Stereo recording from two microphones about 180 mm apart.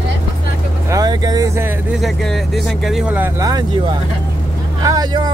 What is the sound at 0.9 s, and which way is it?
Vehicle, 20° right (ahead or behind).